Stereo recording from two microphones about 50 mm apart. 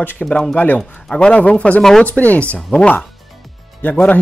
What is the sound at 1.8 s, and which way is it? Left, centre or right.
Speech, centre.